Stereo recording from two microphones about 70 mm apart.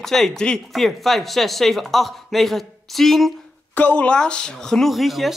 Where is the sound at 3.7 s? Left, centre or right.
Centre.